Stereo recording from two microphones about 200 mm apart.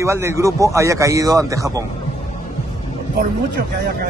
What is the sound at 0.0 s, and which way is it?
Speech, 15° right (ahead or behind).